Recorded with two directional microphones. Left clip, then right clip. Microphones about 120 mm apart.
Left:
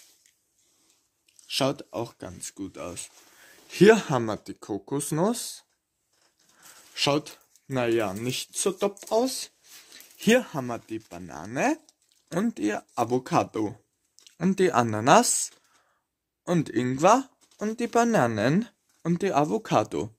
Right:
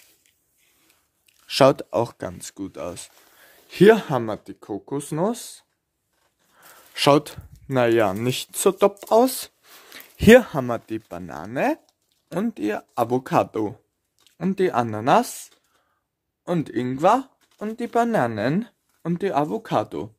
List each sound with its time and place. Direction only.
1.5 s speech: 80° right; by 3.4 s 40° right (ahead or behind)
3.6 s speech: 20° right (ahead or behind); by 5.7 s 5° right (ahead or behind)
6.7 s a sound: 50° right (ahead or behind)
7.6 s speech: 45° right (ahead or behind); by 10.2 s 90° right
10.4 s speech: 35° right (ahead or behind)
11.4 s speech: 10° right (ahead or behind); by 13.7 s 30° right (ahead or behind)
14.2 s speech: centre (ahead or behind)